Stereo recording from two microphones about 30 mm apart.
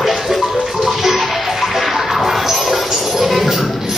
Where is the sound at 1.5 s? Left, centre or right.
Centre.